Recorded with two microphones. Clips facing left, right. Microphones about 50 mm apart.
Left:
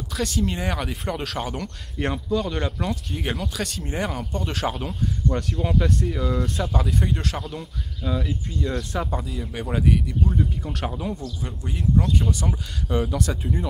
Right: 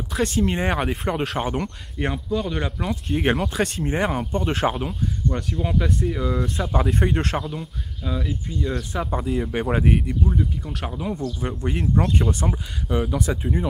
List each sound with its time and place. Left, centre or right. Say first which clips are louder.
0.1 s speech: right 4 dB; right
2.0 s speech: even; centre
3.1 s speech: right 7 dB; right
5.3 s speech: left 1 dB; centre
5.9 s speech: right 1 dB; centre
6.7 s speech: right 3 dB; right
7.5 s speech: right 1 dB; centre
9.2 s speech: right 7 dB; right
10.3 s speech: even; centre
11.1 s speech: right 5 dB; right
11.7 s speech: even; right
12.8 s speech: right 1 dB; centre